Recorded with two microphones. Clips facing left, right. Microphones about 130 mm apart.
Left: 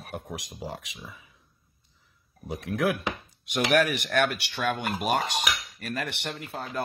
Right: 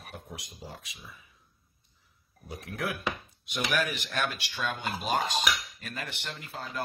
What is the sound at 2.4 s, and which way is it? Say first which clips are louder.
Speech: left 8 dB; 90° left.